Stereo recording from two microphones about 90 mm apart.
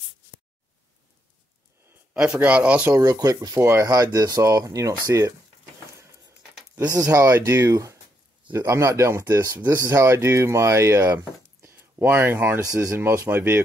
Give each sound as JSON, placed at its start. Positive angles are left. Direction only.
{"t": 2.1, "sound": "speech", "side_deg": -15}
{"t": 2.9, "sound": "speech", "side_deg": -40}
{"t": 3.9, "sound": "speech", "side_deg": -40}
{"t": 6.8, "sound": "speech", "side_deg": -40}